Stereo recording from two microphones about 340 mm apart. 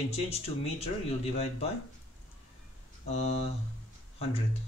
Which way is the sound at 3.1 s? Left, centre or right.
Centre.